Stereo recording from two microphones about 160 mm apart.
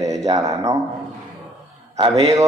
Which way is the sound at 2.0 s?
25° right (ahead or behind).